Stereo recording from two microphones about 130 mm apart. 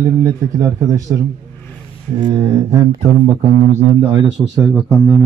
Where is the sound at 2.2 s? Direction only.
30° right (ahead or behind).